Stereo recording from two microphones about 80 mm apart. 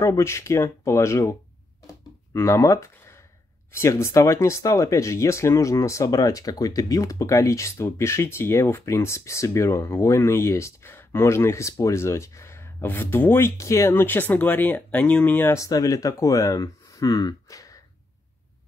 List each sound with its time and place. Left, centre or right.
0.0 s speech: left
2.3 s speech: left
3.0 s a sound: left
3.7 s speech: left
13.6 s speech: left
15.5 s speech: left